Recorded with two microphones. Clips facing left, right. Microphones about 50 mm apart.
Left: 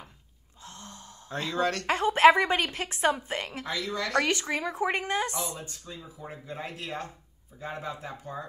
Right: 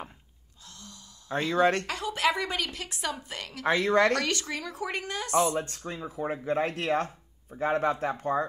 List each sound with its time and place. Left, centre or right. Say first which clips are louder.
0.7 s sigh: left 4 dB; left
1.3 s speech: right 4 dB; right
1.9 s a woman's voice: left 9 dB; left
3.6 s speech: right 14 dB; right
4.1 s speech: left 2 dB; left
5.3 s speech: right 10 dB; right
5.7 s speech: right 7 dB; right